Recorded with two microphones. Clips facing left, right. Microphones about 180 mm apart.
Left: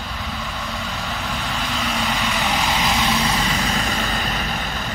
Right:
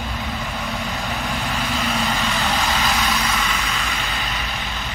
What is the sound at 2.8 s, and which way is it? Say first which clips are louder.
Vehicle: left 2 dB; 20° left (ahead or behind).